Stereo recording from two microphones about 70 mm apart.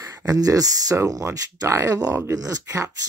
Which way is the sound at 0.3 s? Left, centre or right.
Right.